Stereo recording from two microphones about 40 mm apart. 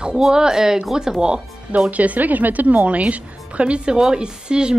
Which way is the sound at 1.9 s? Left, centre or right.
Right.